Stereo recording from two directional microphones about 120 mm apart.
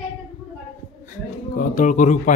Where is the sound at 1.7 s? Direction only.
90° left.